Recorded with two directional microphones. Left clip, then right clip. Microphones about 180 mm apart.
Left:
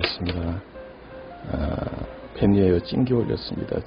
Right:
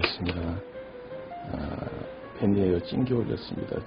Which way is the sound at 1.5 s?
15° left (ahead or behind).